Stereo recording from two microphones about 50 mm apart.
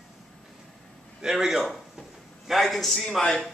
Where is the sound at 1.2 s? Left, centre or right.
Centre.